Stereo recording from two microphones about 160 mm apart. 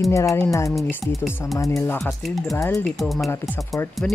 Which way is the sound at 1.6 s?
20° left (ahead or behind).